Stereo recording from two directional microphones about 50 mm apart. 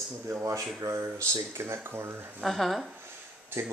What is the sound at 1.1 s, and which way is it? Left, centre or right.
Speech, right.